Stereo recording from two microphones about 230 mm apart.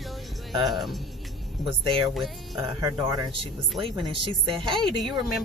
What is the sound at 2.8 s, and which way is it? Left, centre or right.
Speech, centre.